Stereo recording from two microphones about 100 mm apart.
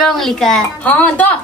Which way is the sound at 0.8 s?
15° left (ahead or behind).